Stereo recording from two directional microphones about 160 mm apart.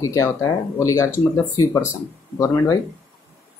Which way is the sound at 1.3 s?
20° left (ahead or behind).